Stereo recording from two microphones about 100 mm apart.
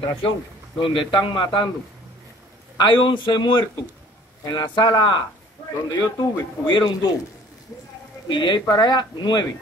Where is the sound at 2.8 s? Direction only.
50° left (ahead or behind).